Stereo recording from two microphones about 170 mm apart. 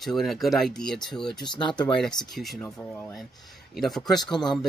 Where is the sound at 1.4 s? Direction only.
25° left (ahead or behind).